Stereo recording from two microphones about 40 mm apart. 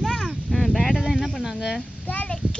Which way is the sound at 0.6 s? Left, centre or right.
Centre.